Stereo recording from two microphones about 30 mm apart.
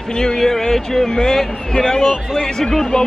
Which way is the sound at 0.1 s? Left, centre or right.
Left.